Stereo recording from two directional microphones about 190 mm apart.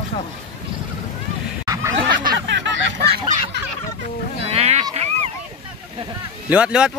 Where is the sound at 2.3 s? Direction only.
75° right (ahead or behind).